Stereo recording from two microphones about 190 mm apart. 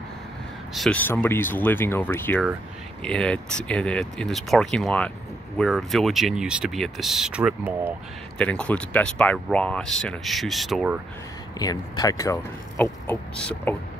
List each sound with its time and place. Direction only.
0.7 s speech: 5° left (ahead or behind)
8.4 s speech: 5° left (ahead or behind)
11.6 s speech: 20° left (ahead or behind)